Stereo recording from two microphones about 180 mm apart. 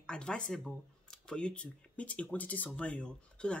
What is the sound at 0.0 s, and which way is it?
Speech, 5° left (ahead or behind).